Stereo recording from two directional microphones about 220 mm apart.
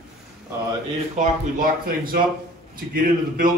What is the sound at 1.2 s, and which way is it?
A man's voice, 40° right (ahead or behind).